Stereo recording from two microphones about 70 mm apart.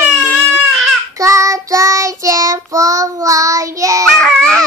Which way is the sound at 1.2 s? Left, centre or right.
Right.